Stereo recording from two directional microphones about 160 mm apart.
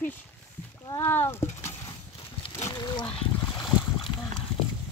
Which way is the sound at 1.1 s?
15° left (ahead or behind).